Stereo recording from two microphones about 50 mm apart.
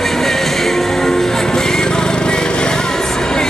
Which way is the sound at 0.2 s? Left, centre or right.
Centre.